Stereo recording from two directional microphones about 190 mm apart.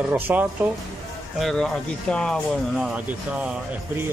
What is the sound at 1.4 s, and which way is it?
Speech, 5° left (ahead or behind).